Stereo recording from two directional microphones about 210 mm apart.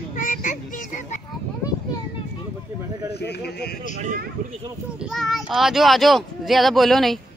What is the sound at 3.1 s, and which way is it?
Speech, 50° left (ahead or behind).